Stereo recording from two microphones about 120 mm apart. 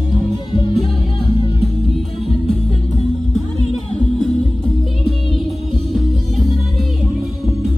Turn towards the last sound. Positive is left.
turn(degrees=0)  # may be behind; listen again after turning